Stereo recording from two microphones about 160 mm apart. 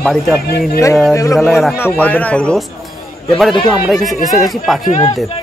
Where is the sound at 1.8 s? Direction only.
10° left (ahead or behind).